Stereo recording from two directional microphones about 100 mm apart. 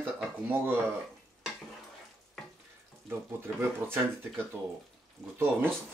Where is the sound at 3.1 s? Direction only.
25° right (ahead or behind).